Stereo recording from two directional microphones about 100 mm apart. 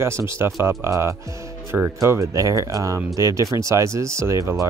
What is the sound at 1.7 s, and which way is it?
Speech, 10° right (ahead or behind).